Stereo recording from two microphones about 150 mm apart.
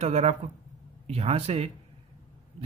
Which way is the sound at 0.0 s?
45° right (ahead or behind).